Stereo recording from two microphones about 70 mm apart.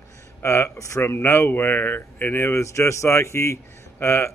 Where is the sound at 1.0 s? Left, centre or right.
Left.